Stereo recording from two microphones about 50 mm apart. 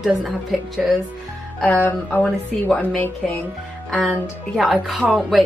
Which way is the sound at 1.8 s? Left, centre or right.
Left.